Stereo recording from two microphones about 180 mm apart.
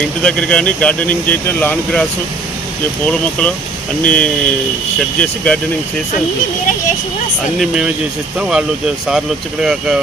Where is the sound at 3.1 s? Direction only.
5° left (ahead or behind).